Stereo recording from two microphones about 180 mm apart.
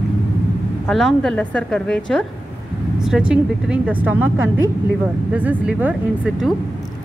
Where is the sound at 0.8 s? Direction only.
Centre (ahead or behind).